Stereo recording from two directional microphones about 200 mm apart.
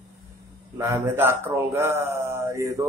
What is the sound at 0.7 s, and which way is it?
Speech, 15° right (ahead or behind).